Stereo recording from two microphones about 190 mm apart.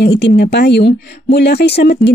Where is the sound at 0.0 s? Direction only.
65° left (ahead or behind).